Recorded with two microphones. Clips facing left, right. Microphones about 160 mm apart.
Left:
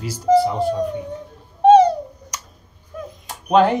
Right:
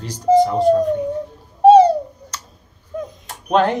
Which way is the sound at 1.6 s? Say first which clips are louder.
Right 2 dB; 30° right (ahead or behind).